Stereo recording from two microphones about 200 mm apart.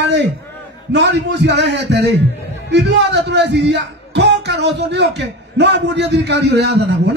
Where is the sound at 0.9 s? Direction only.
60° right (ahead or behind).